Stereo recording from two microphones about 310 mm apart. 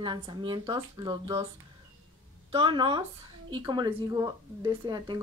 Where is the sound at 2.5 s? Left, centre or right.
Centre.